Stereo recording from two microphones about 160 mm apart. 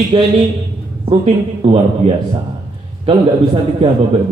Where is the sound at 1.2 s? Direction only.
35° right (ahead or behind).